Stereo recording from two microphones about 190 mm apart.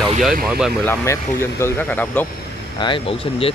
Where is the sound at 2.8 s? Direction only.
30° left (ahead or behind).